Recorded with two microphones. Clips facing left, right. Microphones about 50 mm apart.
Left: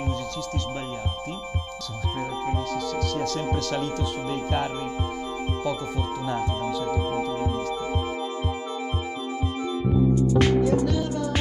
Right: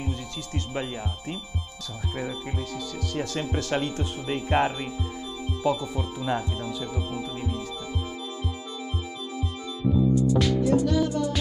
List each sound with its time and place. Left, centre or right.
3.5 s speech: right
6.8 s music: left
10.1 s music: left